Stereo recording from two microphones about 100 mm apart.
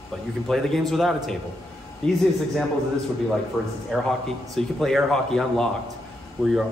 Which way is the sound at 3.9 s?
Centre (ahead or behind).